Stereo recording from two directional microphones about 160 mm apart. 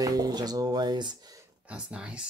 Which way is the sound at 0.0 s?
25° right (ahead or behind).